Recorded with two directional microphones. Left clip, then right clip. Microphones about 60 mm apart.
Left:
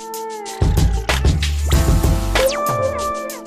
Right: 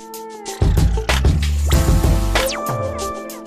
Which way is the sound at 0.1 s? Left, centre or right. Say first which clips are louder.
Left 2 dB; centre.